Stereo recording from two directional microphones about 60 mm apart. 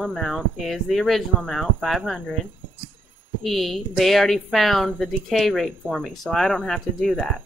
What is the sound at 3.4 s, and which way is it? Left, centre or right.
A woman's voice, centre.